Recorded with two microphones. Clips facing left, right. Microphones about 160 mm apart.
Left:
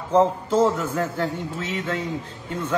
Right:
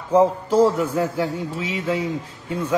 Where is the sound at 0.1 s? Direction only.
10° right (ahead or behind).